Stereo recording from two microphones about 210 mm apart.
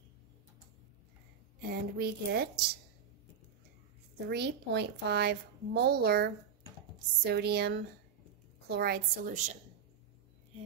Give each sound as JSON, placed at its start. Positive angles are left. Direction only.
{"t": 1.7, "sound": "speech", "side_deg": -50}
{"t": 4.3, "sound": "speech", "side_deg": -50}